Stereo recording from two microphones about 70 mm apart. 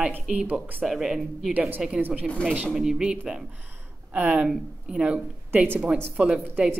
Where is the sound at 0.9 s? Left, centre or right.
Centre.